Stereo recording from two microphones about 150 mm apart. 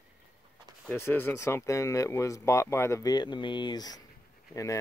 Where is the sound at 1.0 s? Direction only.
15° left (ahead or behind).